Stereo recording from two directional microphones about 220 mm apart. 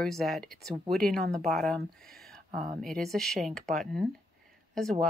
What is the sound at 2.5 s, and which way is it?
Speech, 35° right (ahead or behind).